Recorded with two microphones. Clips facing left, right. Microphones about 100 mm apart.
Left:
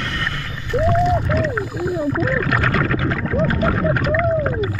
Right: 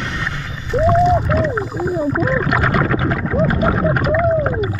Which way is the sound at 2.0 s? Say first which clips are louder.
Right 2 dB; 15° right (ahead or behind).